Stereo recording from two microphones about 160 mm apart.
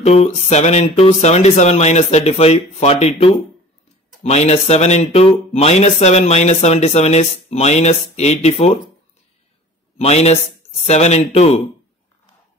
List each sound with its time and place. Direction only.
0.0 s speech: 40° left (ahead or behind)
9.9 s speech: 40° left (ahead or behind)